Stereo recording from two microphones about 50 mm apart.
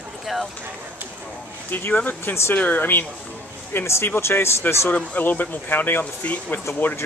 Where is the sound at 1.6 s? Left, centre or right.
Left.